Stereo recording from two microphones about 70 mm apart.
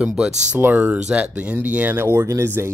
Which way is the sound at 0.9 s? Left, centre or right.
Centre.